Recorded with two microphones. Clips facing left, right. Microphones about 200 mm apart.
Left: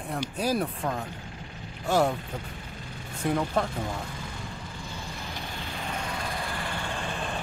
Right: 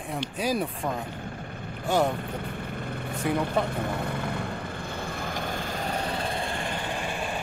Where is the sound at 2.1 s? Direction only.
60° right (ahead or behind); by 7.4 s 15° right (ahead or behind).